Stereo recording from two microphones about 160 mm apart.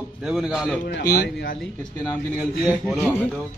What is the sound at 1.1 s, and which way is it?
Speech, 65° left (ahead or behind).